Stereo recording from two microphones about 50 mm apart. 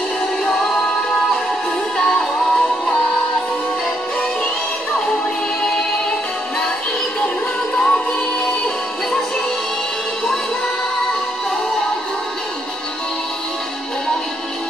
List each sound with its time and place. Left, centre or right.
2.0 s music: centre
5.6 s music: centre
7.7 s music: centre